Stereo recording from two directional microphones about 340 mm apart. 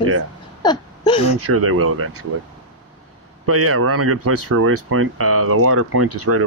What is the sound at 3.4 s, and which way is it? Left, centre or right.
Speech, right.